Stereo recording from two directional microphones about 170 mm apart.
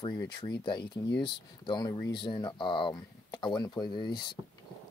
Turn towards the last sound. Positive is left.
turn(degrees=25)  # may be behind; listen again after turning